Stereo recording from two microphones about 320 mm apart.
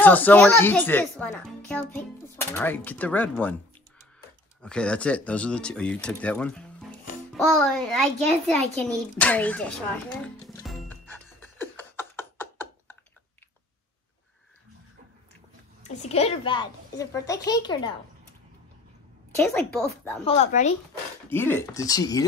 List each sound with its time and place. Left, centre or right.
0.0 s a child's voice: centre
4.6 s a child's voice: centre
10.2 s music: centre
16.0 s a child's voice: centre
19.3 s a child's voice: centre
20.2 s speech: left
21.3 s a child's voice: centre